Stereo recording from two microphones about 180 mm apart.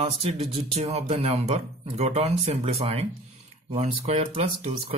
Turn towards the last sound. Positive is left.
turn(degrees=-35)  # may be behind; listen again after turning